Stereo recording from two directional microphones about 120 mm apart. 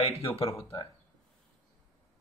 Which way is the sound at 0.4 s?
50° left (ahead or behind).